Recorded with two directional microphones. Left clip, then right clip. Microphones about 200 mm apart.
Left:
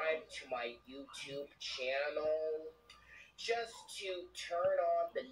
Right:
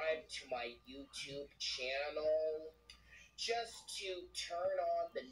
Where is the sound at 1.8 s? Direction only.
15° right (ahead or behind).